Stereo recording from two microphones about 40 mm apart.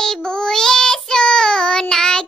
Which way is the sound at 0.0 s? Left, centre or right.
Centre.